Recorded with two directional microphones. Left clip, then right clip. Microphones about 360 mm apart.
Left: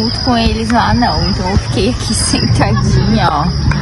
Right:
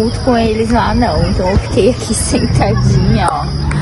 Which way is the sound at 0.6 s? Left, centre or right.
Centre.